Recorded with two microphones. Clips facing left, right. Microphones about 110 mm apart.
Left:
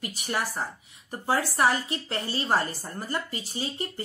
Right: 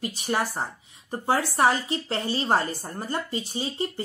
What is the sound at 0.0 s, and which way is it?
A woman's voice, 30° right (ahead or behind).